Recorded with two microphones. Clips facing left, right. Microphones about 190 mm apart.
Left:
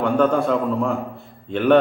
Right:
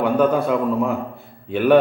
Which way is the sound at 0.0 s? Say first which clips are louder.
Right 1 dB; 5° right (ahead or behind).